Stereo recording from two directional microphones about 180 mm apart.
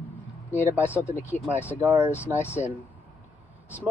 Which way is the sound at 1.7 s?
10° right (ahead or behind).